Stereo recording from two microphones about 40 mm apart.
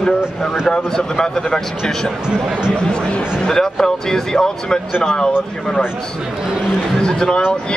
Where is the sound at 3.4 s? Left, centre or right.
Centre.